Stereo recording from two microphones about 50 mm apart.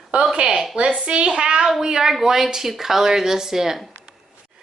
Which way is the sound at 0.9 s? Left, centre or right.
Centre.